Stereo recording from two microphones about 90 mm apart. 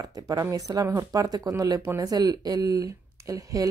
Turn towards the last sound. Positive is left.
turn(degrees=-40)  # may be behind; listen again after turning